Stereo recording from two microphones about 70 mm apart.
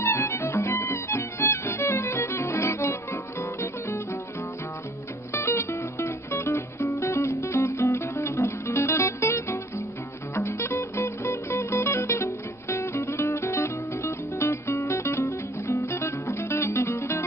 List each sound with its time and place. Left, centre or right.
0.0 s music: left
5.3 s music: left
15.8 s music: left